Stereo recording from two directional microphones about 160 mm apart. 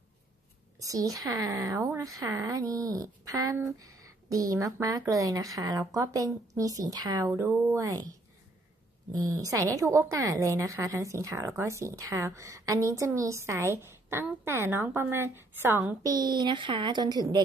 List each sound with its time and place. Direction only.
0.7 s a woman's voice: 20° right (ahead or behind)
9.3 s a woman's voice: 20° right (ahead or behind)